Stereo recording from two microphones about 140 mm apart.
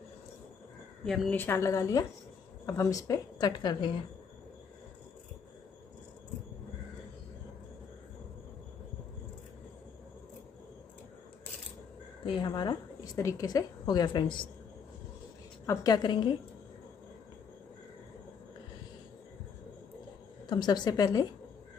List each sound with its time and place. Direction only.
1.0 s a woman's voice: centre (ahead or behind)
1.3 s a woman's voice: 15° left (ahead or behind); by 3.9 s 30° left (ahead or behind)
12.3 s a woman's voice: 30° left (ahead or behind)
15.6 s a woman's voice: 25° left (ahead or behind)
20.4 s a woman's voice: 30° left (ahead or behind)